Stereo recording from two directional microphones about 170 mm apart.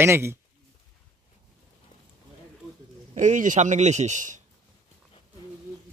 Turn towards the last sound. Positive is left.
turn(degrees=-45)  # may be behind; listen again after turning